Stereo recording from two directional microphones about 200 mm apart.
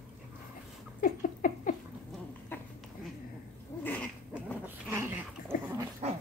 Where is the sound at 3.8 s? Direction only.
10° left (ahead or behind).